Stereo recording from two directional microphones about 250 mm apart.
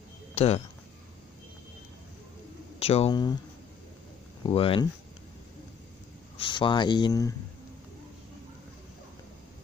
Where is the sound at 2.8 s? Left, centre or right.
Left.